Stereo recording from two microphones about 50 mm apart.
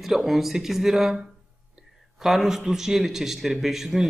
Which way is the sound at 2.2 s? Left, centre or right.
Centre.